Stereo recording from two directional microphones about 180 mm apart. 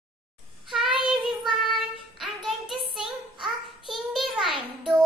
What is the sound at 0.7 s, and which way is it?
Child singing, centre (ahead or behind).